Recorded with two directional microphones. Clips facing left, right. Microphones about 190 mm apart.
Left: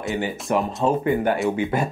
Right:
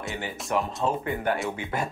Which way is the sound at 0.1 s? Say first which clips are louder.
Left 6 dB; 20° left (ahead or behind).